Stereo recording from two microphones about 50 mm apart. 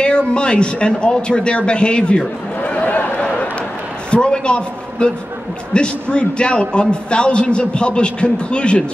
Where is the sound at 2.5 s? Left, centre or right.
Left.